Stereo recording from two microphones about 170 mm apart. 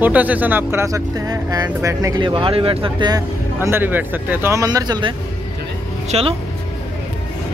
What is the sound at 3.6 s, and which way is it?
Speech, 15° right (ahead or behind).